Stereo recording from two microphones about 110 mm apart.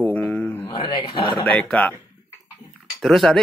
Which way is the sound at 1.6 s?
10° left (ahead or behind).